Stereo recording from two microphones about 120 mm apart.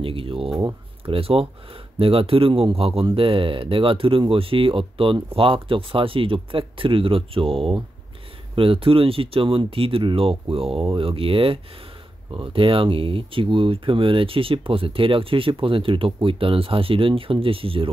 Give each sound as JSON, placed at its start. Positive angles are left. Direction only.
{"t": 0.0, "sound": "speech", "side_deg": -50}